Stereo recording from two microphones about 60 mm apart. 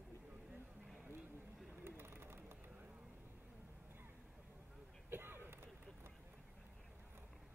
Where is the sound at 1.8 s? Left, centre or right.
Right.